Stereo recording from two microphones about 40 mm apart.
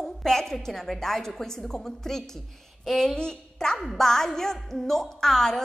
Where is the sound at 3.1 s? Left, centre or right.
Centre.